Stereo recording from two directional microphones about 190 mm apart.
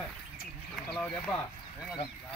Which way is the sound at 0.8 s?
5° left (ahead or behind).